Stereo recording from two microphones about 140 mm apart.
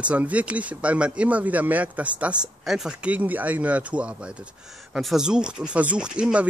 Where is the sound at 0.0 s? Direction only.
10° right (ahead or behind).